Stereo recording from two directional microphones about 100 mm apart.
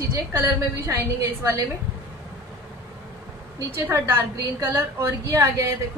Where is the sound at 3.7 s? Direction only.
25° right (ahead or behind).